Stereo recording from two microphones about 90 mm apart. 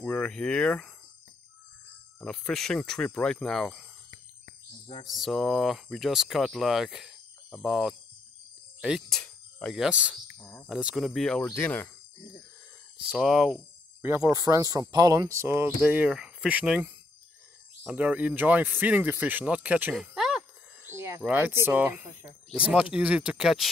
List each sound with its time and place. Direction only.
0.0 s speech: 15° left (ahead or behind)
2.2 s speech: 10° left (ahead or behind)
5.0 s speech: centre (ahead or behind)
9.1 s cricket: 10° left (ahead or behind)
9.8 s speech: 10° right (ahead or behind)
11.6 s speech: 20° left (ahead or behind)
13.0 s speech: 10° right (ahead or behind)
14.3 s speech: 40° right (ahead or behind)
15.8 s speech: 20° right (ahead or behind)
17.9 s speech: 15° right (ahead or behind)
19.9 s a sound: centre (ahead or behind)
20.8 s a sound: 30° right (ahead or behind)
21.3 s speech: 20° right (ahead or behind); by 23.7 s 5° right (ahead or behind)